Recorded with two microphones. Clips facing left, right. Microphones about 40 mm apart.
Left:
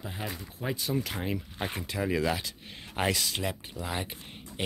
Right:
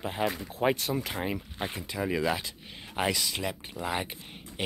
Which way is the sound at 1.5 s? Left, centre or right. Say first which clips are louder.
Even; centre.